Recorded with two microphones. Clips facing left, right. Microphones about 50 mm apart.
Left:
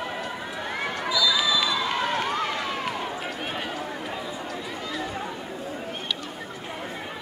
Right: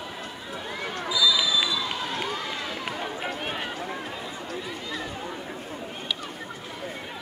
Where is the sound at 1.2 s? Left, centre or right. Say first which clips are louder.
Right 1 dB; left.